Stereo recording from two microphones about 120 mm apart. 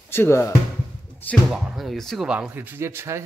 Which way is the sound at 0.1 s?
20° left (ahead or behind).